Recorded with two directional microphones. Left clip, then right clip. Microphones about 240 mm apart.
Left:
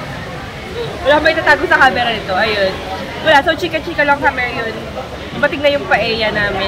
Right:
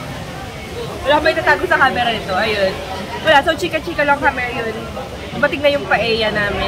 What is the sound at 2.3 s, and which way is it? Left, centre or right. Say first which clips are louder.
Speech: left 4 dB; centre.